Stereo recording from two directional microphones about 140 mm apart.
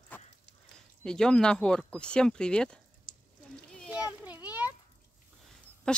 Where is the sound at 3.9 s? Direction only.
10° right (ahead or behind).